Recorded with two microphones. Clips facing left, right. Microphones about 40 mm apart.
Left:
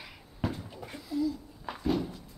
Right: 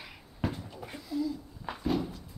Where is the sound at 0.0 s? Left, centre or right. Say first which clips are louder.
Even; centre.